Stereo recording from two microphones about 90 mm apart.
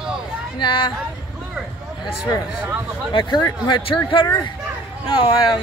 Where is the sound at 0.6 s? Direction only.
60° left (ahead or behind).